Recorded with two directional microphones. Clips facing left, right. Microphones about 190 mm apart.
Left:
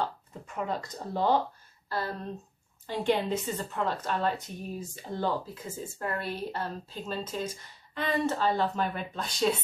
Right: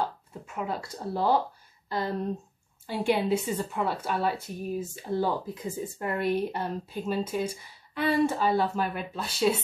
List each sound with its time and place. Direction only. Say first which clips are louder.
0.6 s a woman's voice: even; 10° right (ahead or behind)